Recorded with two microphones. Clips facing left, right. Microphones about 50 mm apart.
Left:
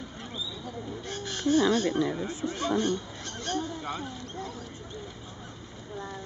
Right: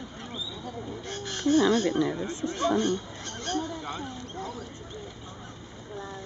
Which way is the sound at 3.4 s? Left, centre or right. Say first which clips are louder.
Right 1 dB; centre.